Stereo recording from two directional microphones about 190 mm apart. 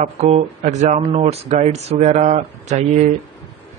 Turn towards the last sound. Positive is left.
turn(degrees=-35)  # may be behind; listen again after turning